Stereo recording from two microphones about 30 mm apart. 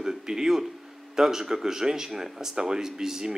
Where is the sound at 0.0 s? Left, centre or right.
Centre.